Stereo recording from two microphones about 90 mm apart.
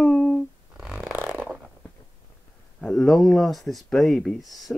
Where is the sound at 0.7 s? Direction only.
5° right (ahead or behind).